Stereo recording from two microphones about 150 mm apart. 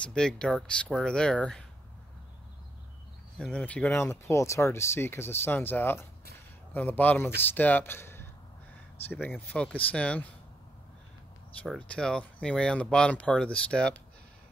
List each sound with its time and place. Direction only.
0.0 s speech: 5° left (ahead or behind)
3.3 s speech: 5° left (ahead or behind)
11.9 s speech: 5° left (ahead or behind)